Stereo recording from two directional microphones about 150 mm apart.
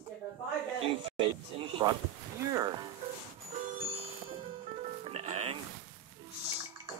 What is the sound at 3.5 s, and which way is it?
Music, 50° right (ahead or behind).